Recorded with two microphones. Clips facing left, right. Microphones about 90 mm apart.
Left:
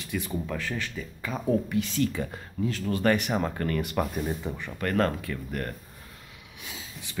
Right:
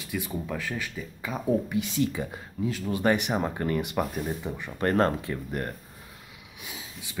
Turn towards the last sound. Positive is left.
turn(degrees=-10)  # may be behind; listen again after turning